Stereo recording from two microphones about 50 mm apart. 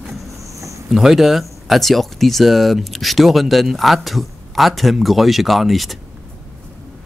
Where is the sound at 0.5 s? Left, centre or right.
Right.